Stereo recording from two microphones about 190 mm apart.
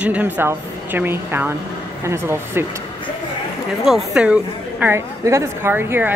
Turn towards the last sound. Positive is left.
turn(degrees=-10)  # may be behind; listen again after turning